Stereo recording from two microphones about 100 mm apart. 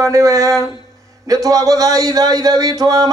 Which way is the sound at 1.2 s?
35° right (ahead or behind).